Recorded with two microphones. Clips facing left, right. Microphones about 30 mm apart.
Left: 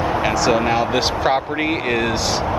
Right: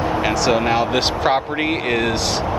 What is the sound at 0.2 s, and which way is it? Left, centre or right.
Speech, centre.